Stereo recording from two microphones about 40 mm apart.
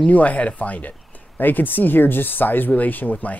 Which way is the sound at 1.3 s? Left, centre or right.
Left.